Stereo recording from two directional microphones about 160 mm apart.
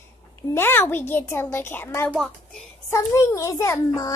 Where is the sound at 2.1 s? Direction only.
Centre (ahead or behind).